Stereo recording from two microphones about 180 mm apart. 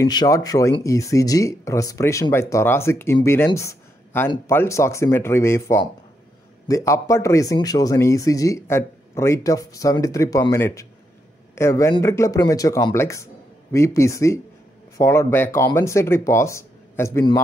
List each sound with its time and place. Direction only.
0.0 s a man's voice: 20° left (ahead or behind)